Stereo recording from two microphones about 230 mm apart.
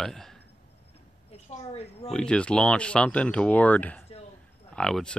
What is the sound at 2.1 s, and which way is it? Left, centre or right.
Speech, centre.